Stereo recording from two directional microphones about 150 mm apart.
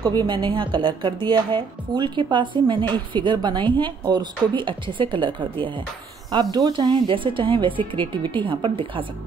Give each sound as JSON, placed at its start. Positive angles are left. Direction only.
{"t": 0.0, "sound": "a woman's voice", "side_deg": -30}